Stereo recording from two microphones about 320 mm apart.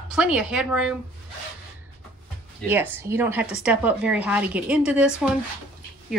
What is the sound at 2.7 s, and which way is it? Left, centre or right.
A woman's voice, centre.